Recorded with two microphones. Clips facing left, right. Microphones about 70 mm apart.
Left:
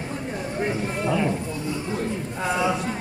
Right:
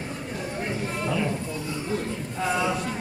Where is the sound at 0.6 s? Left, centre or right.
Left.